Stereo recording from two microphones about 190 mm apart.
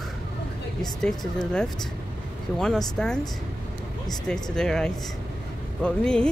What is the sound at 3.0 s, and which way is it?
Speech, 5° left (ahead or behind).